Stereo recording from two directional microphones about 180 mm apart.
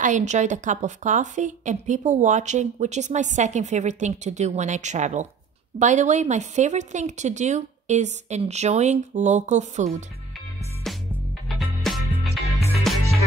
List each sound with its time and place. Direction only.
0.0 s a woman's voice: 40° right (ahead or behind)
11.4 s music: centre (ahead or behind)